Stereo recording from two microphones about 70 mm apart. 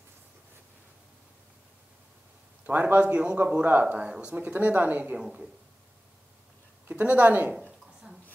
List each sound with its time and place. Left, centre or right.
2.6 s a man's voice: right
5.2 s a man's voice: centre
6.9 s speech: right